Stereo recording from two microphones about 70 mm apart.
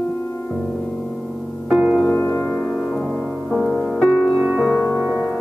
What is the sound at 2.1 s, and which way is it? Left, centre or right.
Music, left.